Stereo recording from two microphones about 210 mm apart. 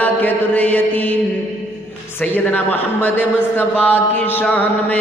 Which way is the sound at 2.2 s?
10° left (ahead or behind).